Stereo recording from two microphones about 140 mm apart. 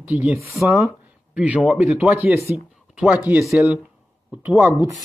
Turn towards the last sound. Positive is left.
turn(degrees=-20)  # may be behind; listen again after turning